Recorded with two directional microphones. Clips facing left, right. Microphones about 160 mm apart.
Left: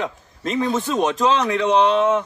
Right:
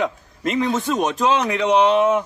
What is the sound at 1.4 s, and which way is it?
Speech, 15° right (ahead or behind).